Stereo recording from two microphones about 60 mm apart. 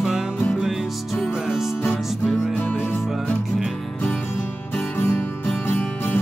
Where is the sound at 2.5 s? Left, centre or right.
Left.